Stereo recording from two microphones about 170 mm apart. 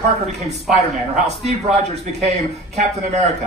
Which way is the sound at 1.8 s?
40° right (ahead or behind).